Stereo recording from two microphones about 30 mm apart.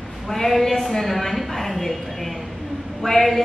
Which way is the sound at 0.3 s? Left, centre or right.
Centre.